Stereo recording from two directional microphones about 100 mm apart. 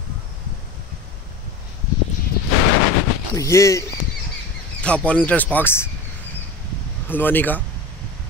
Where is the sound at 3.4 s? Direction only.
30° left (ahead or behind).